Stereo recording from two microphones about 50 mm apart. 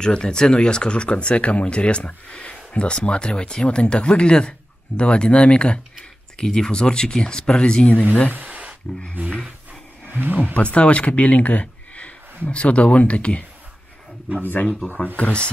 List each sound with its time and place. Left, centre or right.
0.0 s speech: centre
8.4 s a sound: right
9.2 s speech: right
10.5 s speech: left
15.1 s speech: left